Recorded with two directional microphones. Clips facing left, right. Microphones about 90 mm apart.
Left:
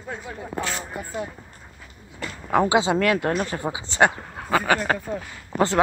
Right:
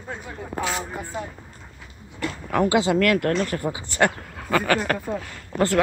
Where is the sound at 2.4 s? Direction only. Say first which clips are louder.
Left 1 dB; 20° left (ahead or behind).